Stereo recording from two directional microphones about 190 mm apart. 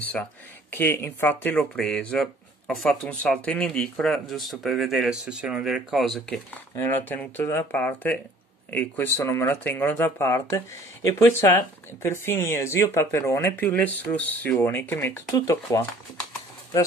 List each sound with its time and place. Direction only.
0.0 s speech: 10° left (ahead or behind)